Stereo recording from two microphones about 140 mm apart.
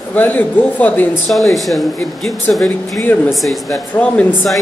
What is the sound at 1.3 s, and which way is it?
Speech, centre (ahead or behind).